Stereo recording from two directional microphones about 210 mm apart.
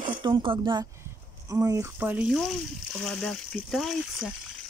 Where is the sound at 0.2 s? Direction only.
25° right (ahead or behind).